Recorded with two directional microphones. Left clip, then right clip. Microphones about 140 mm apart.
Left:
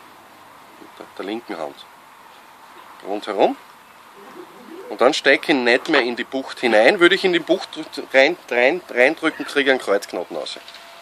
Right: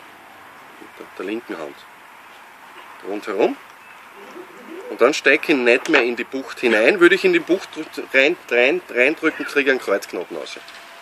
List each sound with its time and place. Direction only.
1.1 s speech: 60° left (ahead or behind)
3.2 s speech: 55° left (ahead or behind)
4.9 s speech: 60° left (ahead or behind)